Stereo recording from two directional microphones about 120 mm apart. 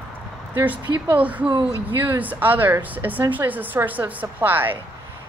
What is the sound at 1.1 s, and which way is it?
Speech, 10° right (ahead or behind).